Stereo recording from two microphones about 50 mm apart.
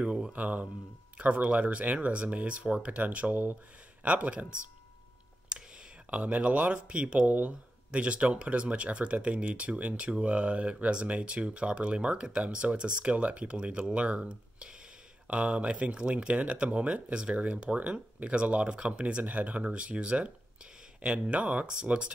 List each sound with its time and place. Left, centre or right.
0.0 s speech: centre
0.3 s speech: right
6.0 s speech: right